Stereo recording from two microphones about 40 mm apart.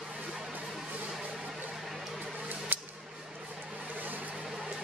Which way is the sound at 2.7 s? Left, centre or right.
Right.